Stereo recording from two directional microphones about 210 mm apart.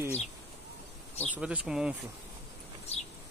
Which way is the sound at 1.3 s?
5° right (ahead or behind).